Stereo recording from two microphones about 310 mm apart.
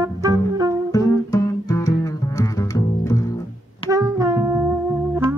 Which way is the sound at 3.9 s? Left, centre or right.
Centre.